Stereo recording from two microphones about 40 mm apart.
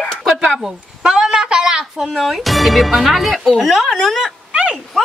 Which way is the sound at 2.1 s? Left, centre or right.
Centre.